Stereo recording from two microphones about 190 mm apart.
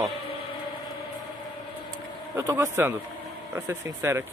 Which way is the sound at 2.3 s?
15° right (ahead or behind).